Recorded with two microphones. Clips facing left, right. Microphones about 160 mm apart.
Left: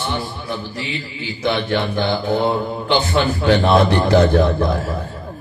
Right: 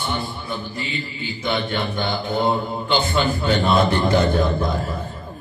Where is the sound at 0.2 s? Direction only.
80° left.